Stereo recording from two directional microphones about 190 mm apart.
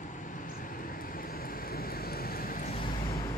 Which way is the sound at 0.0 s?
40° left (ahead or behind).